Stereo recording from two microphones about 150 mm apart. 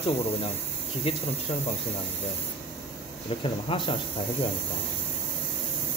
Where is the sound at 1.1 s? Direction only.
40° left (ahead or behind).